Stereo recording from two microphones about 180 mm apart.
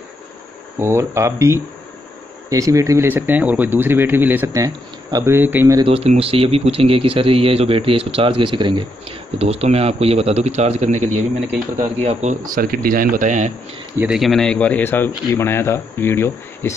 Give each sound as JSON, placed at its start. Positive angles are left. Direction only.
{"t": 0.7, "sound": "speech", "side_deg": -15}
{"t": 5.8, "sound": "speech", "side_deg": -30}
{"t": 12.5, "sound": "speech", "side_deg": -50}
{"t": 13.9, "sound": "speech", "side_deg": -5}